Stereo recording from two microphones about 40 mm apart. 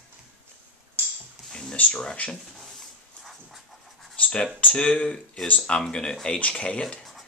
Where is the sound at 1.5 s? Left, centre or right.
Centre.